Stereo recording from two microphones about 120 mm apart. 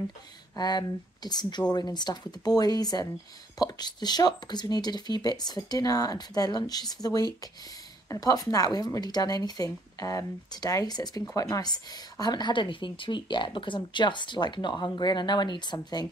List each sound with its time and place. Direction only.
0.6 s speech: 35° left (ahead or behind)